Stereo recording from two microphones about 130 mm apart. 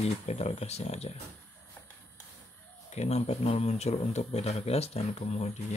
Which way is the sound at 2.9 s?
55° left (ahead or behind).